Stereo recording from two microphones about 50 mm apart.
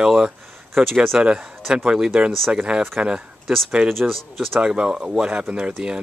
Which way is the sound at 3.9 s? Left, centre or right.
Centre.